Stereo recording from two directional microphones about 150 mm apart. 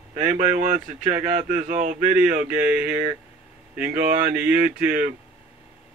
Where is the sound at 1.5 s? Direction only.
55° right (ahead or behind).